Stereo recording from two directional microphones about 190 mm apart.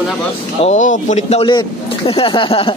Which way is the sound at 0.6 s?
40° left (ahead or behind).